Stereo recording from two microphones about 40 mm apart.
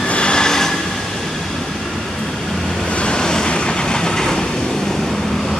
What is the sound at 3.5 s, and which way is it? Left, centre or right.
Train, left.